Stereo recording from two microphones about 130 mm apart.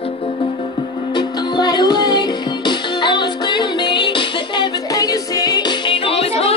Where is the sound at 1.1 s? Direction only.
35° left (ahead or behind).